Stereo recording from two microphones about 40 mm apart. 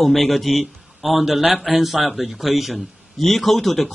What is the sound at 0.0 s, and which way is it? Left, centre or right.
A man's voice, centre.